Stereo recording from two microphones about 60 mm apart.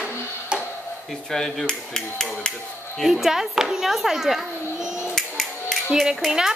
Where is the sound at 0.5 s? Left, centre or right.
Centre.